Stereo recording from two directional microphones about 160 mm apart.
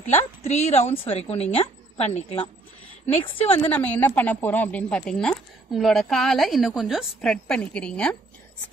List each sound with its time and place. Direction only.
0.4 s a woman's voice: 45° left (ahead or behind)
3.6 s speech: 10° left (ahead or behind)